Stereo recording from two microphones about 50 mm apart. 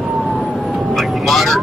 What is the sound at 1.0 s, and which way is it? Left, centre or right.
Meow, centre.